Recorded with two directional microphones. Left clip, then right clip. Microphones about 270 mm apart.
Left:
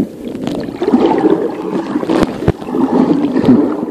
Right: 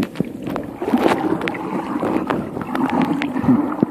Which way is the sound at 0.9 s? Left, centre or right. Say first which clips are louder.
Left 6 dB; centre.